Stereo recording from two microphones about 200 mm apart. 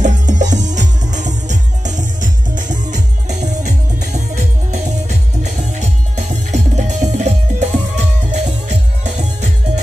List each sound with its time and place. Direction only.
0.0 s music: 35° right (ahead or behind)